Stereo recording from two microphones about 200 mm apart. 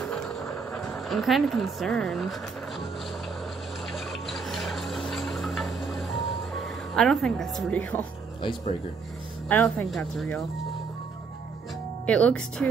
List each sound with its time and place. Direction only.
0.1 s a sound: centre (ahead or behind)
3.9 s music: centre (ahead or behind)
8.4 s speech: 25° left (ahead or behind)
9.5 s speech: 10° left (ahead or behind)
12.1 s speech: 5° left (ahead or behind)